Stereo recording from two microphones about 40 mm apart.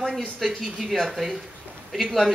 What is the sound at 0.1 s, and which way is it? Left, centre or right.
Speech, centre.